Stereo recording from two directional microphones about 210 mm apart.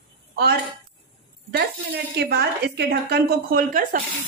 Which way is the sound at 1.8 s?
50° right (ahead or behind).